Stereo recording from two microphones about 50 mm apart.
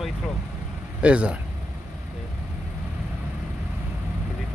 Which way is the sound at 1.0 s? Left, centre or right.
Right.